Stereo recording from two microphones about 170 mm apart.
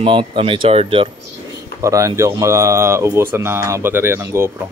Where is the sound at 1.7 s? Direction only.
20° right (ahead or behind).